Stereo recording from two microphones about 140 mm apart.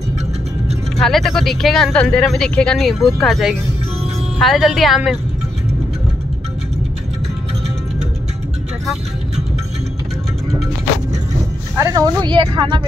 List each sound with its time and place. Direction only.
0.9 s speech: centre (ahead or behind)
11.7 s speech: 20° right (ahead or behind)